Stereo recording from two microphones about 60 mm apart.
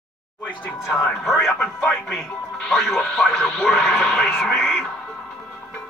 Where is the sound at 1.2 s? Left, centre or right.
Centre.